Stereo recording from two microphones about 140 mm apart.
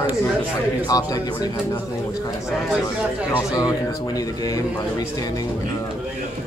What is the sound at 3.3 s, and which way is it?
A man's voice, 25° left (ahead or behind).